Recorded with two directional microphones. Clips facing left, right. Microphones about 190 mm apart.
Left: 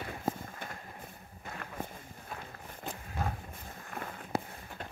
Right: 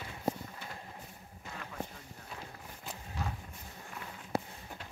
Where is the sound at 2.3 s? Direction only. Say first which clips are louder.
Left 2 dB; 50° left (ahead or behind).